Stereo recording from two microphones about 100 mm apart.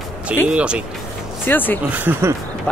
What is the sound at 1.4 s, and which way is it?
Speech, 20° left (ahead or behind).